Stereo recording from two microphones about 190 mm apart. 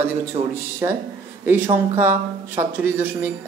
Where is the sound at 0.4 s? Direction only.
30° right (ahead or behind).